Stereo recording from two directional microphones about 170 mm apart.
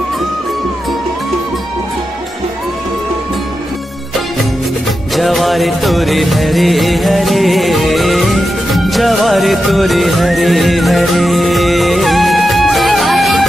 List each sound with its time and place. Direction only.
5.1 s music: centre (ahead or behind)